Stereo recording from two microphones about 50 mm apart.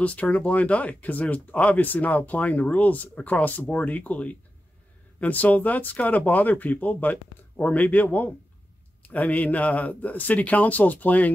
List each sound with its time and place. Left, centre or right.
0.0 s speech: left